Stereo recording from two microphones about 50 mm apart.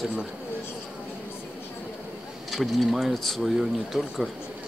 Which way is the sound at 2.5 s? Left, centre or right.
Centre.